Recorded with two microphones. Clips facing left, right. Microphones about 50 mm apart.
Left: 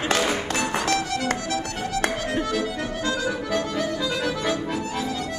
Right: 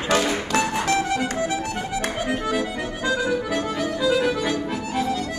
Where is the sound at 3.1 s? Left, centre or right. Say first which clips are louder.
Right 4 dB; centre.